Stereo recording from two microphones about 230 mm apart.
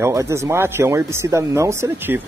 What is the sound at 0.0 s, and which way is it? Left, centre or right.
Speech, centre.